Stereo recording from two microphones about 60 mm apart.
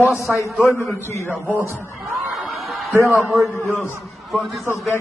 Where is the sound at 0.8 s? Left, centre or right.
Left.